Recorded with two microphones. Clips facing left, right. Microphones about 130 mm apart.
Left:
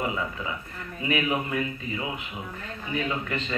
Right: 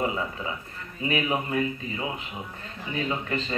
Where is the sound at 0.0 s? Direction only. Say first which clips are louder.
Right 1 dB; 30° right (ahead or behind).